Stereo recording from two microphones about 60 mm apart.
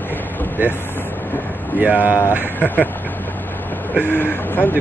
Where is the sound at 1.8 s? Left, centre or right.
Right.